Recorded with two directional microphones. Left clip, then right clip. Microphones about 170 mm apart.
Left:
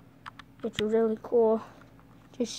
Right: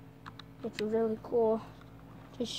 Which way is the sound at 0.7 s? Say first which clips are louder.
Left 5 dB; 50° left (ahead or behind).